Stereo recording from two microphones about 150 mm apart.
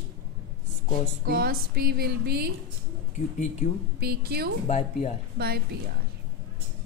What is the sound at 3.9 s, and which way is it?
Speech, 90° right.